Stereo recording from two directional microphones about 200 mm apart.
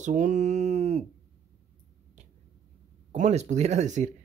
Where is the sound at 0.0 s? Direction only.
40° right (ahead or behind).